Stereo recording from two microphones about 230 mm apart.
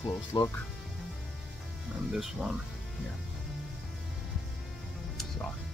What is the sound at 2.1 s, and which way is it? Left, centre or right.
Speech, centre.